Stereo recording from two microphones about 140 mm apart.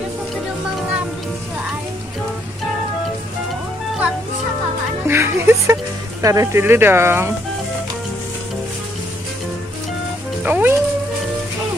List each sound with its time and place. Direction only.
5.0 s speech: 15° right (ahead or behind)
10.4 s music: 15° right (ahead or behind)